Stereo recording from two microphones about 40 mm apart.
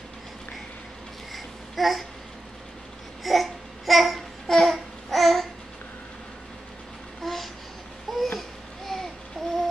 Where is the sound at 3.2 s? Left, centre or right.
Centre.